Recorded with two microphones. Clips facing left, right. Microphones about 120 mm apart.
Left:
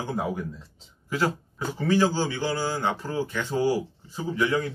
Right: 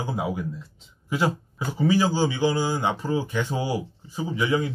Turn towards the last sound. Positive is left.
turn(degrees=-10)  # may be behind; listen again after turning